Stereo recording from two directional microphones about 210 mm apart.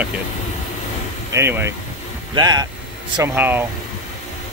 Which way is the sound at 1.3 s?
10° right (ahead or behind).